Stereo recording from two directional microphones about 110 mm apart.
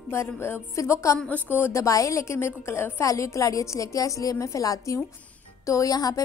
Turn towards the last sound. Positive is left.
turn(degrees=35)  # may be behind; listen again after turning